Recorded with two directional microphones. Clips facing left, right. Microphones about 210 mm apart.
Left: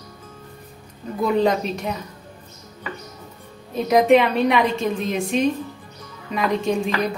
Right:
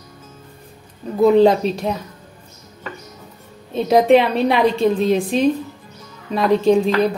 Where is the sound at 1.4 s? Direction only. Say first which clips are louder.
Right 6 dB; 30° right (ahead or behind).